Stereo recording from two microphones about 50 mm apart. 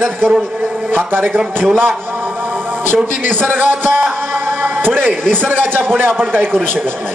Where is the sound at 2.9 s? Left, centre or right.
Right.